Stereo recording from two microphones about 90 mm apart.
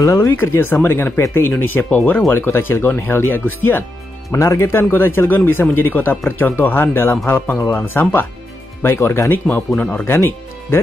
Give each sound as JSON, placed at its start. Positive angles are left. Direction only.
{"t": 0.0, "sound": "speech", "side_deg": 35}
{"t": 0.3, "sound": "speech", "side_deg": 25}
{"t": 10.0, "sound": "speech", "side_deg": 30}